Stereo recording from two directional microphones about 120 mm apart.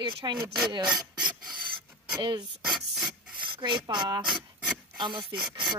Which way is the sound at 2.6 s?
Centre (ahead or behind).